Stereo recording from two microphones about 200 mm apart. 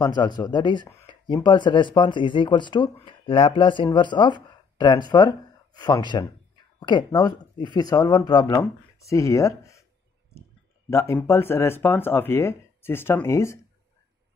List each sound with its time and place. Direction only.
0.0 s speech: 20° left (ahead or behind)
10.9 s speech: 15° left (ahead or behind)